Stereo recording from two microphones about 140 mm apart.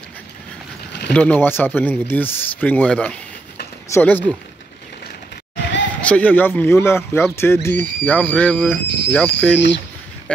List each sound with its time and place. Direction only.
1.0 s speech: 10° left (ahead or behind)
5.9 s speech: 10° left (ahead or behind)